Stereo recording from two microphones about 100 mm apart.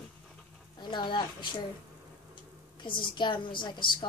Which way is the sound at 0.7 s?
50° left (ahead or behind).